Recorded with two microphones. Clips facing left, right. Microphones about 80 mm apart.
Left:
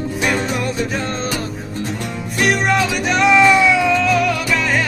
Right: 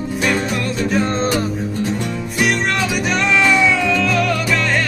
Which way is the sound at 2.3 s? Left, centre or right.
Centre.